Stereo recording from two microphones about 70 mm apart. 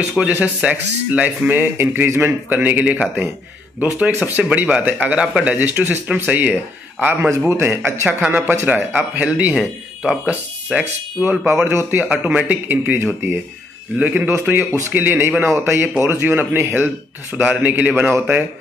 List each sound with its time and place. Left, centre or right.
0.3 s speech: right
2.0 s speech: right
2.5 s speech: right
7.2 s speech: right
8.1 s speech: right
9.5 s speech: centre
10.2 s speech: right
11.2 s speech: centre
11.6 s speech: right